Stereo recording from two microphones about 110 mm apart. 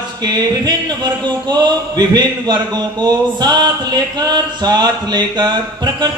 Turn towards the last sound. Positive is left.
turn(degrees=-40)  # may be behind; listen again after turning